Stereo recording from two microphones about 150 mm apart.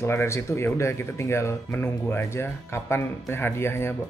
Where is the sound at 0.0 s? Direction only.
15° left (ahead or behind).